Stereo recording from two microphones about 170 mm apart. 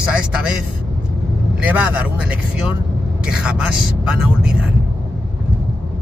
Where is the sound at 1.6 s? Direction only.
5° right (ahead or behind).